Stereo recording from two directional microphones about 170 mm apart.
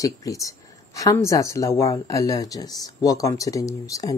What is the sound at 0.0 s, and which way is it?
A woman's voice, 20° left (ahead or behind).